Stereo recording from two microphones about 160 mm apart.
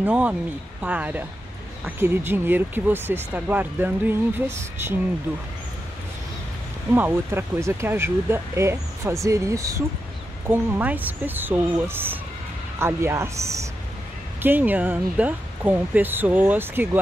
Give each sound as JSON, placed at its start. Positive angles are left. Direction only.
{"t": 0.0, "sound": "speech", "side_deg": -10}
{"t": 6.9, "sound": "speech", "side_deg": -15}